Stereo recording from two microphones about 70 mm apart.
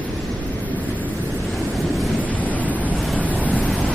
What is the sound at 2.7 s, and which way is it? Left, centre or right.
Waves, right.